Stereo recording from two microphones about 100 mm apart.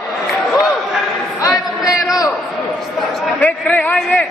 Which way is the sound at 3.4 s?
15° left (ahead or behind).